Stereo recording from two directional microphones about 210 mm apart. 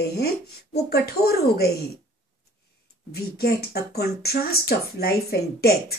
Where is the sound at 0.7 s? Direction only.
50° left (ahead or behind).